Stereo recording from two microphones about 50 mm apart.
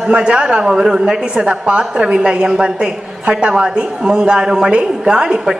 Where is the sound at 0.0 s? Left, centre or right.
Right.